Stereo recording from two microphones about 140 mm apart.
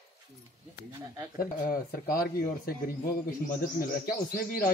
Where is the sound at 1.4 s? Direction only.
90° left.